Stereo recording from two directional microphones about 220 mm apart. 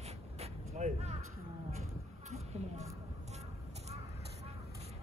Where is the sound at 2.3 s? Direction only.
30° right (ahead or behind).